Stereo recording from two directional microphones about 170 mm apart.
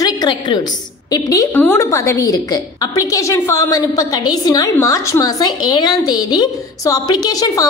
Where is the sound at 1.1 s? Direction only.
20° left (ahead or behind).